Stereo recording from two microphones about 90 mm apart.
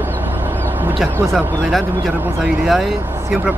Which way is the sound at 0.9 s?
Centre (ahead or behind).